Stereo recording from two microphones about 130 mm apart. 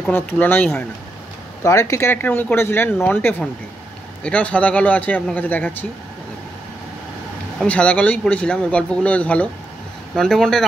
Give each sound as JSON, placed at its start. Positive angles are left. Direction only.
{"t": 0.1, "sound": "speech", "side_deg": 15}
{"t": 7.5, "sound": "speech", "side_deg": 10}